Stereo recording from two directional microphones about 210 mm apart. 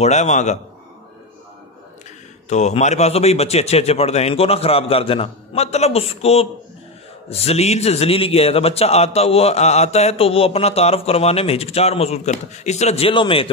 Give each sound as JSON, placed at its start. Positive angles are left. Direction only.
{"t": 0.0, "sound": "a man's voice", "side_deg": 35}
{"t": 2.5, "sound": "a man's voice", "side_deg": 35}